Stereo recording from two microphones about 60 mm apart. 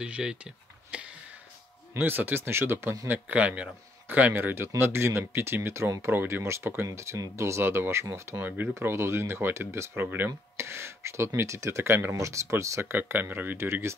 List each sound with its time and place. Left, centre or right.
0.0 s speech: centre
2.0 s speech: right
3.1 s speech: right
7.2 s speech: right
10.0 s speech: right
10.6 s speech: right
12.9 s speech: right
13.6 s speech: right